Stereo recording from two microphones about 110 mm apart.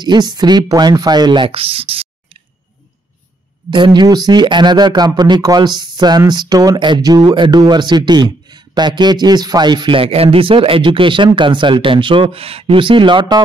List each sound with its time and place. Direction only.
0.0 s speech: 40° right (ahead or behind); by 2.0 s 60° right (ahead or behind)
3.7 s speech: 45° right (ahead or behind)
7.3 s a man's voice: 50° right (ahead or behind)